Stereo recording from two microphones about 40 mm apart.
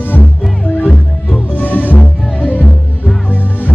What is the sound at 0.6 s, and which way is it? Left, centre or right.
Music, left.